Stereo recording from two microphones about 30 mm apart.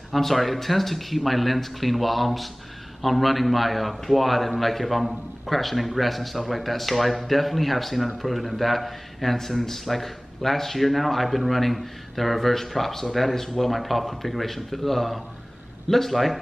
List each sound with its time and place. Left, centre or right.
0.1 s a man's voice: centre